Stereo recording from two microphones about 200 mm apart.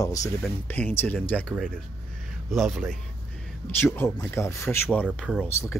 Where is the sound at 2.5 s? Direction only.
Centre (ahead or behind).